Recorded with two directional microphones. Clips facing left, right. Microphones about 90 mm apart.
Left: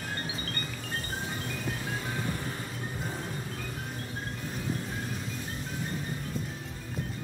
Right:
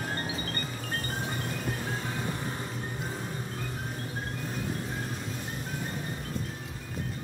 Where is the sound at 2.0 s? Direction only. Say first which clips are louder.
Even; 25° right (ahead or behind).